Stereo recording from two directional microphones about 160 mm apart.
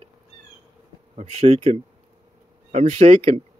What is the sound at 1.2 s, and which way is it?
Speech, 40° right (ahead or behind).